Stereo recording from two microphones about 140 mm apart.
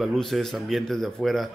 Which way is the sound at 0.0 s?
Centre (ahead or behind).